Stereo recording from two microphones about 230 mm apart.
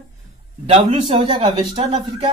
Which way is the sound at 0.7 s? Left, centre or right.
Right.